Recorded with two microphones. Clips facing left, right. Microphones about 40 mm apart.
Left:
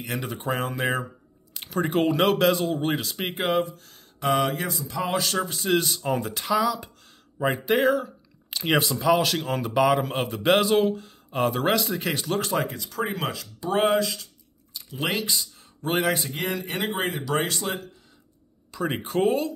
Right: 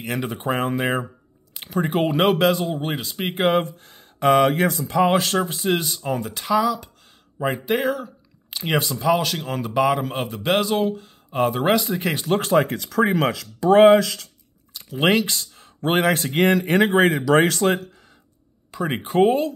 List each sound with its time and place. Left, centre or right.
0.0 s speech: centre
1.7 s speech: centre
3.3 s speech: right
3.7 s speech: right
4.2 s speech: right
5.3 s speech: centre
5.9 s speech: centre
12.2 s speech: right
12.6 s speech: right
15.0 s speech: right
15.5 s a sound: right
16.3 s speech: right
18.8 s speech: centre